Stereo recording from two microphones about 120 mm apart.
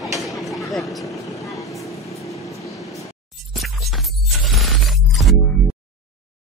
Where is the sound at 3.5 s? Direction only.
Centre (ahead or behind).